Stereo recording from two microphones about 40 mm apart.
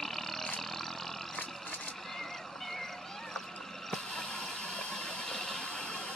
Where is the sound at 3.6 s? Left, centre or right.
Centre.